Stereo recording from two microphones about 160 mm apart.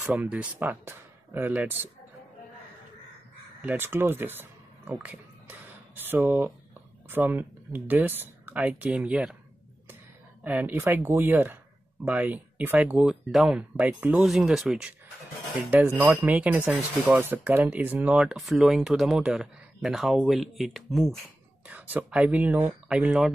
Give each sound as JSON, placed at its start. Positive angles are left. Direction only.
{"t": 0.0, "sound": "speech", "side_deg": -10}
{"t": 3.6, "sound": "speech", "side_deg": -15}
{"t": 10.4, "sound": "speech", "side_deg": -10}
{"t": 21.6, "sound": "speech", "side_deg": -10}